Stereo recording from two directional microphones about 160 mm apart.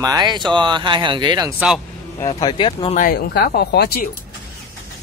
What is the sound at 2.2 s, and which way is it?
Speech, 30° left (ahead or behind).